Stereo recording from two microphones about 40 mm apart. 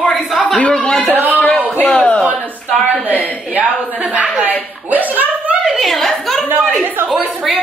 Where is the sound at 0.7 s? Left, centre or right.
Centre.